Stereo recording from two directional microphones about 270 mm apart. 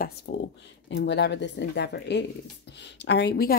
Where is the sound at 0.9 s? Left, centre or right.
Left.